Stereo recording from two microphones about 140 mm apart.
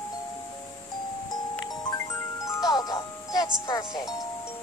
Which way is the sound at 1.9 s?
25° left (ahead or behind).